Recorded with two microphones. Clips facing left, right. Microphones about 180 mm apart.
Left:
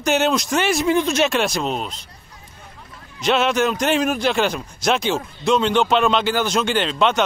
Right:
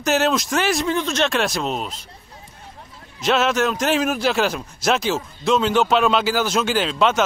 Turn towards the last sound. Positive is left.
turn(degrees=0)  # may be behind; listen again after turning